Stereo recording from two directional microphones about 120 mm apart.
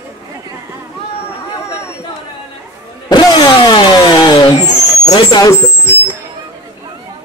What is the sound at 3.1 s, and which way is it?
Vehicle, 35° left (ahead or behind).